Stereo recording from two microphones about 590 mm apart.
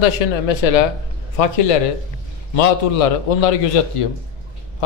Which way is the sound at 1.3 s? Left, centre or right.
Left.